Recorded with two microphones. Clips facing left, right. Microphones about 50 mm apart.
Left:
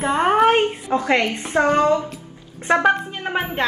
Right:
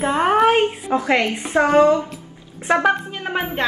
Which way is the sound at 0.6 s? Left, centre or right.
Centre.